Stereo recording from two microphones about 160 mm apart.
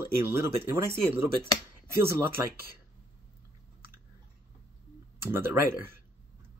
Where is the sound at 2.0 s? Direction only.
15° right (ahead or behind).